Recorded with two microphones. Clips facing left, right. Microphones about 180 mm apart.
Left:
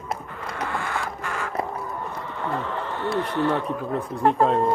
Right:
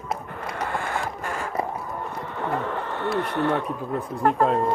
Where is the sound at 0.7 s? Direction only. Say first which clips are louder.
Even; 50° right (ahead or behind).